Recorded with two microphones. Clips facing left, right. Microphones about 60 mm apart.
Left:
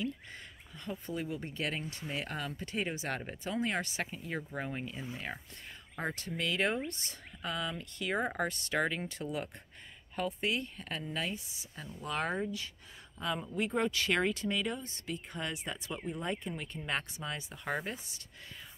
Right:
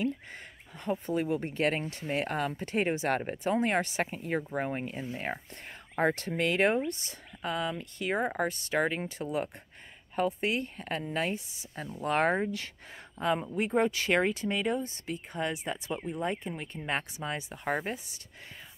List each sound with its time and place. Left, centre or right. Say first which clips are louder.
0.0 s a sound: right 6 dB; right
1.1 s speech: right 7 dB; right
3.2 s speech: right 7 dB; right
6.9 s speech: right 6 dB; centre; by 12.7 s right
13.2 s speech: right 7 dB; right
13.5 s speech: right 5 dB; right
15.5 s speech: right 5 dB; centre; by 17.9 s right